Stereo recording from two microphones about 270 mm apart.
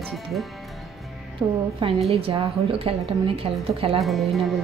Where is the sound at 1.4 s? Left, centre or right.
Centre.